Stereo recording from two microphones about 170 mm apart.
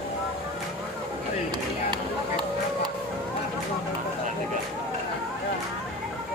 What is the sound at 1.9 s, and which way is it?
Music, 25° right (ahead or behind).